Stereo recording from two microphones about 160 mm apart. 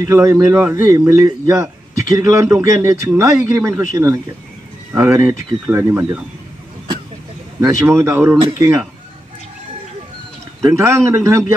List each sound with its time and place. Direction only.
0.0 s a man's voice: 20° right (ahead or behind)
7.6 s a man's voice: 15° right (ahead or behind)
10.6 s a man's voice: 20° right (ahead or behind)